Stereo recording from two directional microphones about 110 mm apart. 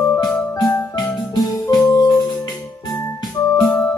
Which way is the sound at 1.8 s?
35° left (ahead or behind).